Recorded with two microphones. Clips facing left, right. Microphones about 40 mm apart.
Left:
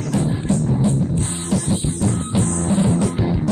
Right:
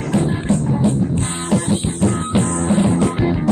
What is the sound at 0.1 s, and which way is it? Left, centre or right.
Music, right.